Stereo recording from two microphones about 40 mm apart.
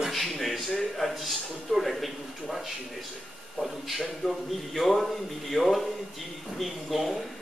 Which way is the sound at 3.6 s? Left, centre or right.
Centre.